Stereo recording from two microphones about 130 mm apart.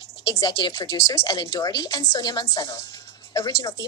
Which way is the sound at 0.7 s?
25° left (ahead or behind).